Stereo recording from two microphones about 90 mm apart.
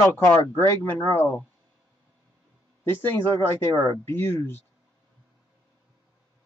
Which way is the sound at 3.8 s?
25° left (ahead or behind).